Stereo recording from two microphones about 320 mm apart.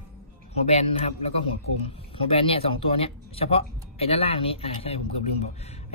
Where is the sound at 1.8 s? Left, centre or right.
Centre.